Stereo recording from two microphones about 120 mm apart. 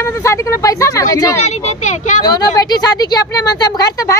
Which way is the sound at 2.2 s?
35° left (ahead or behind).